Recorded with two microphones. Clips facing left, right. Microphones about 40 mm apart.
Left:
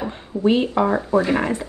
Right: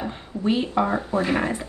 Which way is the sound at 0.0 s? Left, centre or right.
Left.